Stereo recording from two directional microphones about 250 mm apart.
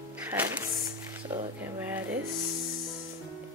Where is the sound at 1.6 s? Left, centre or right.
Centre.